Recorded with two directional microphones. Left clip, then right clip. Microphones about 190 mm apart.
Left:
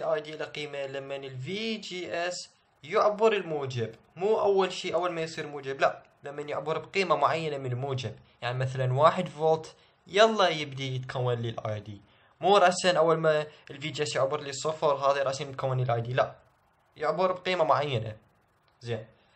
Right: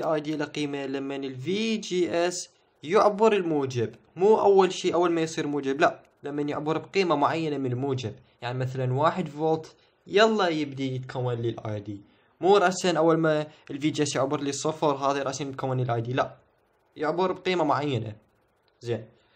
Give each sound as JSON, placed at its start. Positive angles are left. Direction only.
{"t": 0.0, "sound": "speech", "side_deg": -40}